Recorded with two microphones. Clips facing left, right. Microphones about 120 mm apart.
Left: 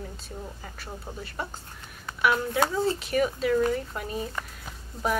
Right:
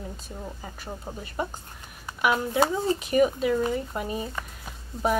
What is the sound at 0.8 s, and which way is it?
Speech, 20° right (ahead or behind).